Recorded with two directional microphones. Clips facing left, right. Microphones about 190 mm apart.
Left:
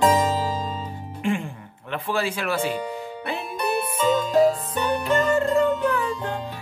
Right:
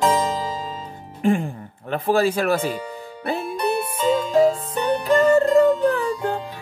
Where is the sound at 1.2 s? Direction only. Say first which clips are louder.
Right 6 dB; 40° right (ahead or behind).